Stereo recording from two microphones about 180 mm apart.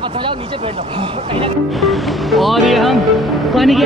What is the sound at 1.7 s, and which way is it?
Speech, centre (ahead or behind).